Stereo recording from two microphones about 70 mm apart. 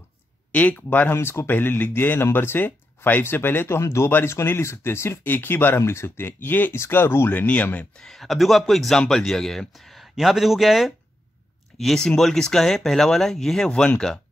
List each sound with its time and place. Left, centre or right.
0.5 s speech: left
7.4 s speech: left
8.0 s speech: centre